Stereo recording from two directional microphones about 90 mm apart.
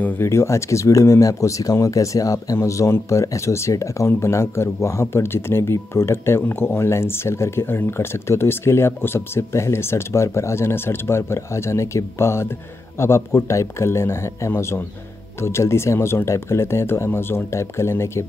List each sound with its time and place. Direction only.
0.0 s speech: 30° left (ahead or behind)